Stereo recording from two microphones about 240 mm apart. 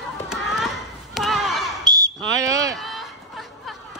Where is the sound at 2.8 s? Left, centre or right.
Centre.